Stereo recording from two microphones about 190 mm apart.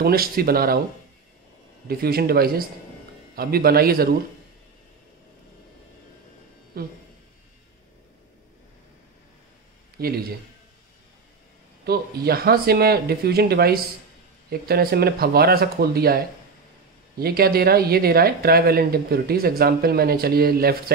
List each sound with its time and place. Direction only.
0.0 s speech: 50° right (ahead or behind)
1.9 s speech: 55° right (ahead or behind)
6.7 s speech: 55° right (ahead or behind)
9.9 s a man's voice: 55° right (ahead or behind)
11.8 s speech: 55° right (ahead or behind)
17.2 s speech: 55° right (ahead or behind)